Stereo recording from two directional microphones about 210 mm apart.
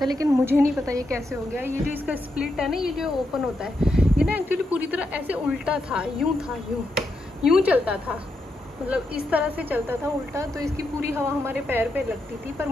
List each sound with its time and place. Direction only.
0.0 s a woman's voice: 15° right (ahead or behind)